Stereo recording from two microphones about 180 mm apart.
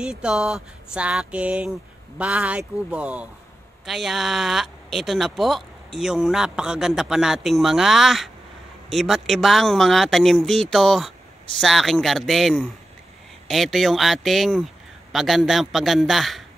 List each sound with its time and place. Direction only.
0.0 s a man's voice: 5° right (ahead or behind)